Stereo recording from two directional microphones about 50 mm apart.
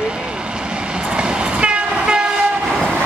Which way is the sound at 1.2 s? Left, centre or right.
Centre.